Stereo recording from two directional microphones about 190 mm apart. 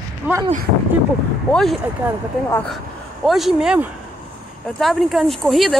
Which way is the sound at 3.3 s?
Centre (ahead or behind).